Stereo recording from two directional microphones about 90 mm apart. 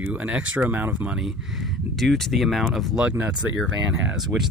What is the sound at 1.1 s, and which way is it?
Speech, 5° right (ahead or behind).